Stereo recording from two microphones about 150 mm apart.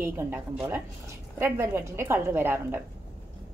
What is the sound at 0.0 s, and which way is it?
A woman's voice, 15° right (ahead or behind).